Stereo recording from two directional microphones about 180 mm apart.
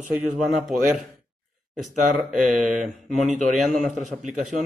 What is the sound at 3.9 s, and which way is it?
Speech, 45° right (ahead or behind).